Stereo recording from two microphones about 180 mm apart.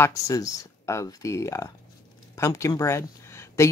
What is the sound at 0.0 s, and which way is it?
Speech, 15° left (ahead or behind).